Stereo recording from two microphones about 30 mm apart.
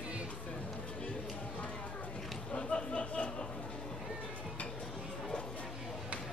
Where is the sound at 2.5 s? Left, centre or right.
Left.